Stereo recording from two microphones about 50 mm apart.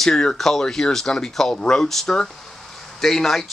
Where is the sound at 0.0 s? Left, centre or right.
Centre.